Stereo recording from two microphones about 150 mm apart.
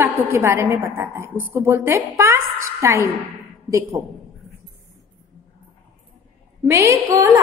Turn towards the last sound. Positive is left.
turn(degrees=-20)  # may be behind; listen again after turning